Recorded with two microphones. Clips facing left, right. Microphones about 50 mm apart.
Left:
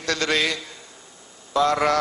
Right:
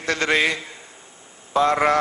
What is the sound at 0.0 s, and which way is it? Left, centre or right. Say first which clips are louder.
A man's voice: right 3 dB; right.